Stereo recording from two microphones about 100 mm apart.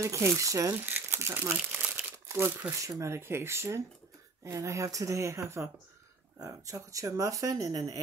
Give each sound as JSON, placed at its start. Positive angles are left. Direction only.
{"t": 0.0, "sound": "speech", "side_deg": -30}
{"t": 0.8, "sound": "crumpling", "side_deg": -25}
{"t": 2.9, "sound": "speech", "side_deg": -30}